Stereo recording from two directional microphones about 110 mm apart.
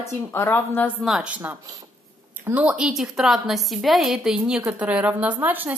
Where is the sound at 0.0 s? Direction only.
20° left (ahead or behind).